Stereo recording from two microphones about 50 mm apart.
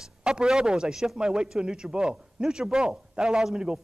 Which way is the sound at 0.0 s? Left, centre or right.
Centre.